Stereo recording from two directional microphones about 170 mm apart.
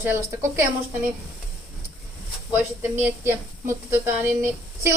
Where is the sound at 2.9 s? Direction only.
10° right (ahead or behind).